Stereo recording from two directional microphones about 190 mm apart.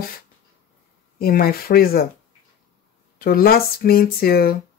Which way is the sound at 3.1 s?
50° left (ahead or behind).